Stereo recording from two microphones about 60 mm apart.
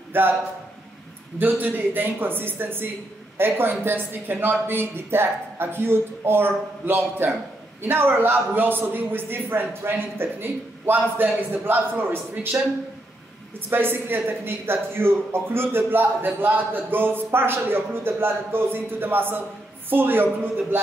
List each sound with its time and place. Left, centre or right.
0.1 s speech: right
1.4 s speech: right
13.7 s speech: right